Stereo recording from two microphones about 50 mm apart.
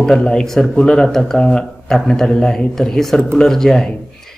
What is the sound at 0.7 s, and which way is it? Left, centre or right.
Speech, centre.